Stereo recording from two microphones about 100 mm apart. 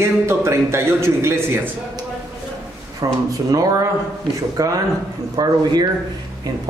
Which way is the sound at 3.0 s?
35° right (ahead or behind).